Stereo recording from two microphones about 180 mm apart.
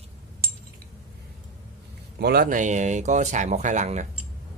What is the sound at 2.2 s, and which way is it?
Speech, 60° right (ahead or behind).